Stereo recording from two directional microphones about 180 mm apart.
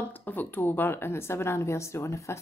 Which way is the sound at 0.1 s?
10° left (ahead or behind).